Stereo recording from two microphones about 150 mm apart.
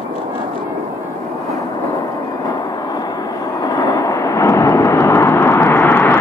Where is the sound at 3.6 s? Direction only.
25° left (ahead or behind).